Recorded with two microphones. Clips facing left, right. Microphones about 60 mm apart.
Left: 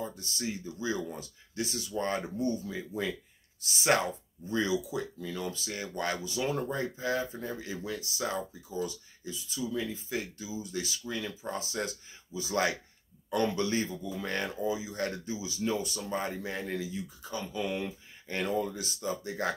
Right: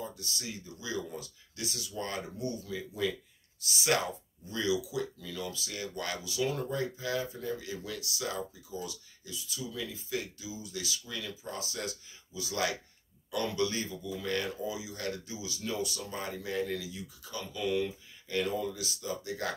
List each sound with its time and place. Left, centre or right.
0.0 s speech: left
4.5 s speech: left